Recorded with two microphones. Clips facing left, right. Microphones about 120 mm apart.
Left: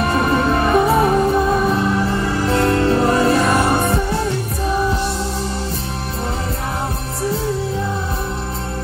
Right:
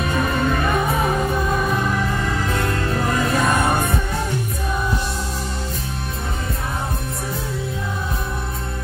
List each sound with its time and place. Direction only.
0.0 s music: 35° left (ahead or behind)